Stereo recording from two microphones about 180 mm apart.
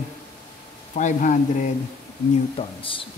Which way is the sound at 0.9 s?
40° left (ahead or behind).